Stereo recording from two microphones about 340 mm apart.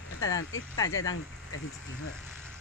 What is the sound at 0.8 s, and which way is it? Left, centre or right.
Speech, centre.